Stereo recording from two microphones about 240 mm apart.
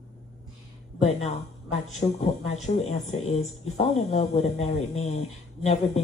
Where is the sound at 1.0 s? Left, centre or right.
Left.